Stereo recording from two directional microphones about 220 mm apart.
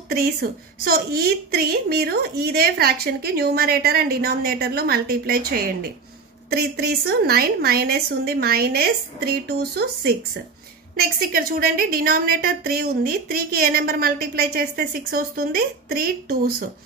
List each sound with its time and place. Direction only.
0.1 s a woman's voice: 45° right (ahead or behind)